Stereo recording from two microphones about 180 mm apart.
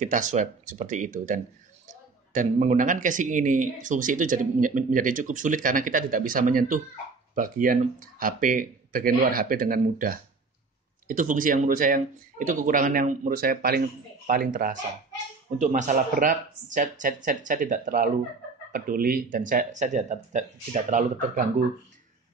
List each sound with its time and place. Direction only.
0.0 s speech: 45° right (ahead or behind)